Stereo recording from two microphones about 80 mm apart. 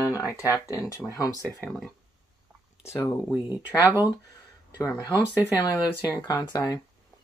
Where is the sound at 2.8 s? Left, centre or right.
Left.